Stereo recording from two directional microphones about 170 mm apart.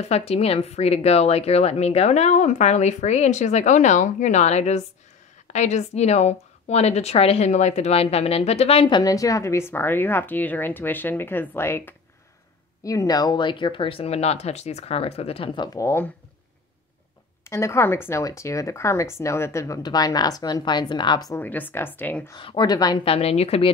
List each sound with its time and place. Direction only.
0.1 s a woman's voice: 35° left (ahead or behind); by 16.1 s 15° left (ahead or behind)
17.5 s speech: 15° left (ahead or behind)
22.3 s speech: 30° left (ahead or behind)
23.0 s a woman's voice: 35° left (ahead or behind)